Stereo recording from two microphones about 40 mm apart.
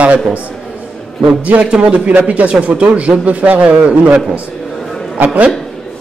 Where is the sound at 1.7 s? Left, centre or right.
Right.